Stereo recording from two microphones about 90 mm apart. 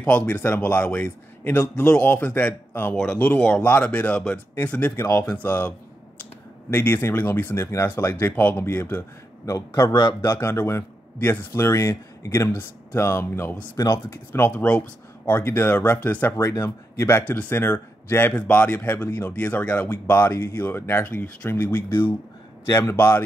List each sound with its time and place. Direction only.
0.0 s a man's voice: 15° left (ahead or behind)
5.0 s speech: 30° left (ahead or behind)
10.2 s speech: 30° left (ahead or behind)
13.7 s speech: 35° left (ahead or behind)